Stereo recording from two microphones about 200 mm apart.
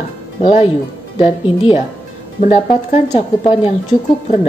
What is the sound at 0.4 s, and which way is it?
A woman's voice, 30° left (ahead or behind).